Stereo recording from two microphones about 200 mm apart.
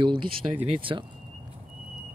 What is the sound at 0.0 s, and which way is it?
Speech, 25° right (ahead or behind).